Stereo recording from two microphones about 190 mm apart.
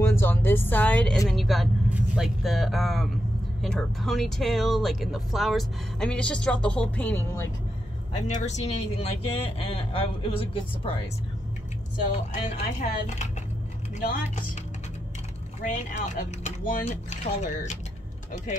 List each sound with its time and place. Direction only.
0.0 s speech: 10° left (ahead or behind)
8.5 s speech: 35° left (ahead or behind)
12.1 s speech: 35° left (ahead or behind)
13.9 s speech: 45° left (ahead or behind)
15.6 s speech: 40° left (ahead or behind)